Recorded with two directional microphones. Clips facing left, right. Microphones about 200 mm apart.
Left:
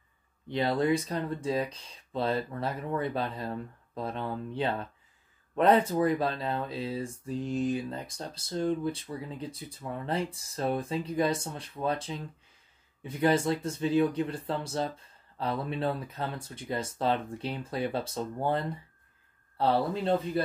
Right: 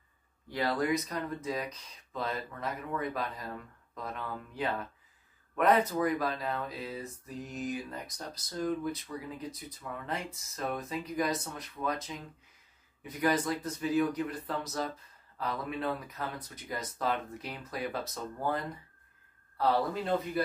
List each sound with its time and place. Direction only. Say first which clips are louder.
0.5 s speech: left 4 dB; 25° left (ahead or behind)